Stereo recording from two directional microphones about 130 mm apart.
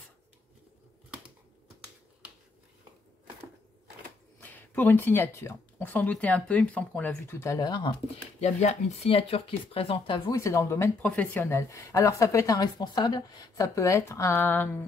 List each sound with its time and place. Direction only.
4.4 s speech: 15° left (ahead or behind); by 7.9 s 30° left (ahead or behind)
8.4 s speech: 60° left (ahead or behind); by 10.3 s 35° left (ahead or behind)
10.3 s speech: 25° left (ahead or behind)